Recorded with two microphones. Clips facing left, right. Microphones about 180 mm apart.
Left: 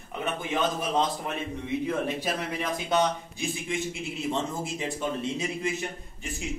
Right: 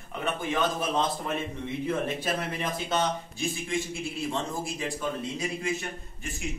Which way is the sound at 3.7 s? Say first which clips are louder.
Even; 20° left (ahead or behind).